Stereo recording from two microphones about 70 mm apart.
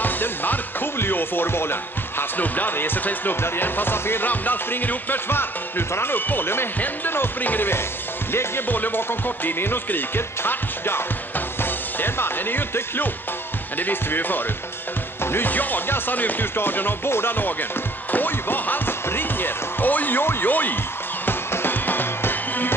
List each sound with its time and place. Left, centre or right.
0.0 s speech: left
18.1 s basketball bounce: left
21.3 s music: left